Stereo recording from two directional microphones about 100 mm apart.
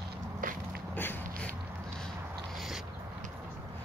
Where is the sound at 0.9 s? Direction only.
20° left (ahead or behind).